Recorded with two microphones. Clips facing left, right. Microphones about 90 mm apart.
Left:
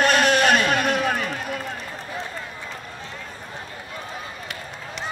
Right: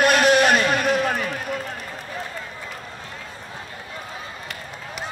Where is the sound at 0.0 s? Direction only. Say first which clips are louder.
Right 2 dB; 10° right (ahead or behind).